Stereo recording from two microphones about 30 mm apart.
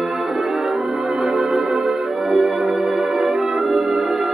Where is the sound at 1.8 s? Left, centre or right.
Centre.